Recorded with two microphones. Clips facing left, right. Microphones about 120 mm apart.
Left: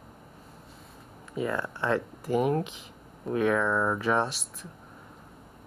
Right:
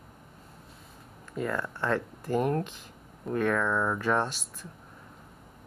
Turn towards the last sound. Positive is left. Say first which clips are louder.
# left 1 dB
turn(degrees=0)  # may be behind; listen again after turning